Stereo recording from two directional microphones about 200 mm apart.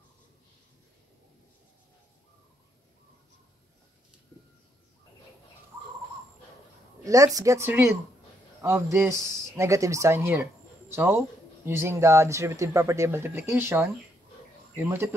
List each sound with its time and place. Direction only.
7.1 s speech: 15° right (ahead or behind)